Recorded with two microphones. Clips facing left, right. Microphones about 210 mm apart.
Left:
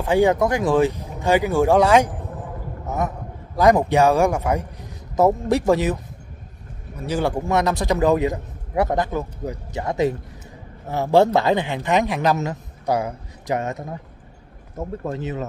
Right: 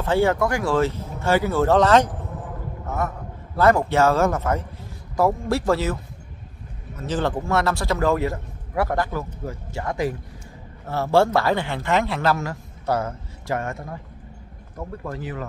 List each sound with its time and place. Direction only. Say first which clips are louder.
0.0 s a man's voice: left 3 dB; 15° left (ahead or behind)
7.0 s a man's voice: left 2 dB; 10° left (ahead or behind)